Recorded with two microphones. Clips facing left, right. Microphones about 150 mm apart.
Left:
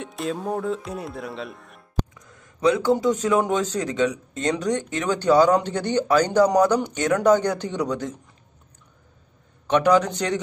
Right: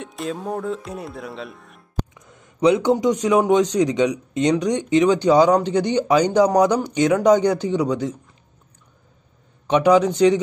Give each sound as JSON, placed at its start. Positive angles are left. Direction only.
{"t": 0.0, "sound": "speech", "side_deg": 0}
{"t": 2.1, "sound": "speech", "side_deg": -25}
{"t": 9.7, "sound": "speech", "side_deg": -10}